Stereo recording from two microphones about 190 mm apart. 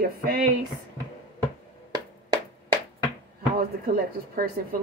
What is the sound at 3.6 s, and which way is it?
Speech, 50° right (ahead or behind).